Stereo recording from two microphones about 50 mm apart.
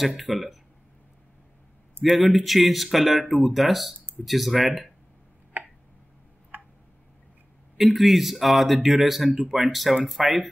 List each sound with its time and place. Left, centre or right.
0.2 s speech: centre
2.0 s speech: centre
5.5 s tick: right
7.7 s speech: centre